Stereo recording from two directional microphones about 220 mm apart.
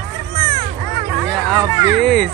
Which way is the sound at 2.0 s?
Centre (ahead or behind).